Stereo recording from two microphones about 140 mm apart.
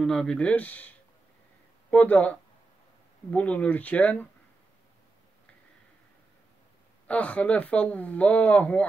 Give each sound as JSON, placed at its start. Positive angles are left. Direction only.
{"t": 0.0, "sound": "speech", "side_deg": 5}
{"t": 7.1, "sound": "speech", "side_deg": 10}